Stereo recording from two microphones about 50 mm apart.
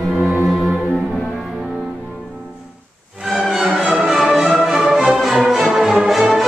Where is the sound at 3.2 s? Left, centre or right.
Centre.